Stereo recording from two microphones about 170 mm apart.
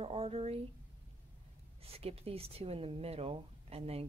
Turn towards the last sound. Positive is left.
turn(degrees=-35)  # may be behind; listen again after turning